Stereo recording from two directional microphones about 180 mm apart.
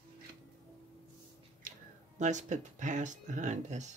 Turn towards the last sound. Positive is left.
turn(degrees=-40)  # may be behind; listen again after turning